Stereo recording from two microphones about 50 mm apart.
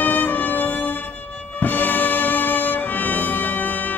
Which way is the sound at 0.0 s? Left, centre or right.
Left.